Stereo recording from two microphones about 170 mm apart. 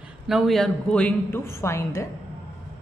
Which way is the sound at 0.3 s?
Centre (ahead or behind).